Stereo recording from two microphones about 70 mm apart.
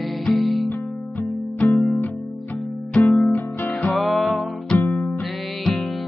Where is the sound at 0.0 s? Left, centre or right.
Centre.